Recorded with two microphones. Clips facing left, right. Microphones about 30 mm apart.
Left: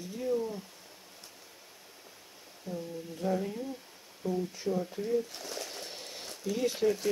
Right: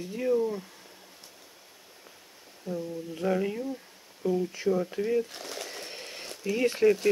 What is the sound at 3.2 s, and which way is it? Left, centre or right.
Speech, right.